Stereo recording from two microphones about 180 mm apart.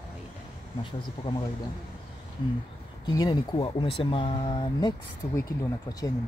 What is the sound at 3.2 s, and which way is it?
Speech, 20° left (ahead or behind).